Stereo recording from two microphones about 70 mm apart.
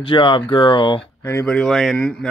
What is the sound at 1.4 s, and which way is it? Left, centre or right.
Speech, centre.